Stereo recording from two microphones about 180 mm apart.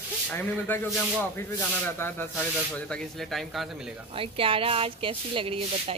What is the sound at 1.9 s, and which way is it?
A man's voice, 10° left (ahead or behind).